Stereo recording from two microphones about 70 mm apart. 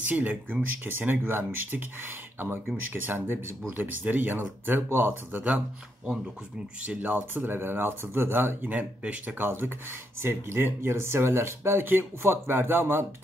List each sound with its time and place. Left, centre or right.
0.0 s speech: right
6.8 s speech: right